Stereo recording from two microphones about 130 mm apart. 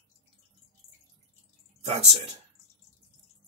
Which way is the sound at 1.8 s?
55° right (ahead or behind).